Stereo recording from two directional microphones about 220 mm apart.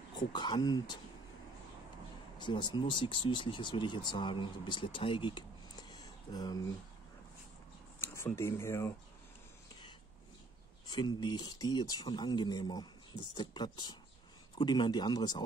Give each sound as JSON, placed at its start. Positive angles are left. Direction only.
{"t": 0.1, "sound": "speech", "side_deg": 20}
{"t": 2.3, "sound": "speech", "side_deg": 20}
{"t": 8.0, "sound": "speech", "side_deg": 10}
{"t": 10.9, "sound": "speech", "side_deg": 20}